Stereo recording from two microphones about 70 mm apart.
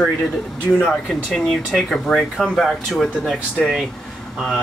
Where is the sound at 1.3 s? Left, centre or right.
Centre.